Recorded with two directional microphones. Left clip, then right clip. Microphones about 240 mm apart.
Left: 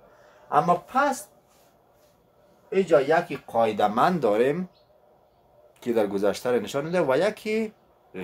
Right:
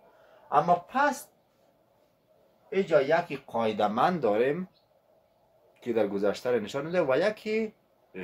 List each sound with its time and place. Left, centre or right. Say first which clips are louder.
0.5 s a man's voice: left 2 dB; centre
2.9 s speech: left 3 dB; centre
5.8 s speech: left 3 dB; centre